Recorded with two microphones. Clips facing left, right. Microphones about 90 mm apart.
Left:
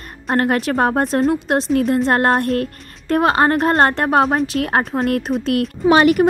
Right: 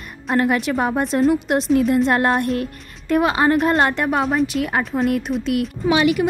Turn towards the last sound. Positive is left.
turn(degrees=50)  # may be behind; listen again after turning